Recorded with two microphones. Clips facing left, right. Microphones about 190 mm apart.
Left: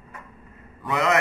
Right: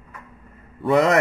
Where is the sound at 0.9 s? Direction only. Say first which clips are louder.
Right 6 dB; 40° right (ahead or behind).